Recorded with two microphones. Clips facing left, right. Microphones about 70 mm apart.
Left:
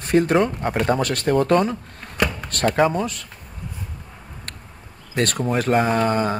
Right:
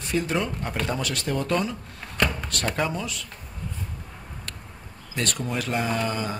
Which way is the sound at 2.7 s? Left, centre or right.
Left.